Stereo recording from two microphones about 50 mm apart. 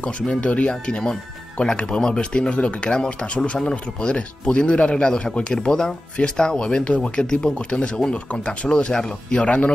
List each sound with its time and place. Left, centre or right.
0.3 s speech: left